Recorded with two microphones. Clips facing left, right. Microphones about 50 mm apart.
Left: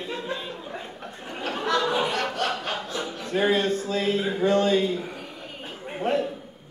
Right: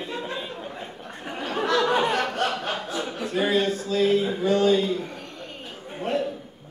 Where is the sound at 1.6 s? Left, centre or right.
Centre.